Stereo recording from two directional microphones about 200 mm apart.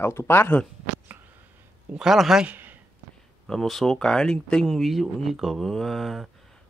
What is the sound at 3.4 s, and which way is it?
Speech, centre (ahead or behind).